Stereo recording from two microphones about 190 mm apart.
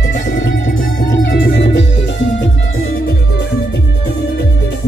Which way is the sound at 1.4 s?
65° left (ahead or behind).